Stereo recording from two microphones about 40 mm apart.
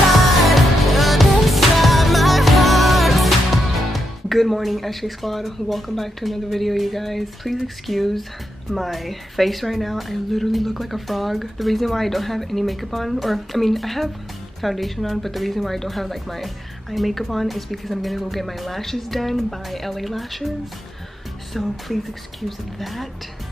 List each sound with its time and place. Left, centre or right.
0.5 s music: centre
3.9 s a woman's voice: centre
21.5 s a woman's voice: centre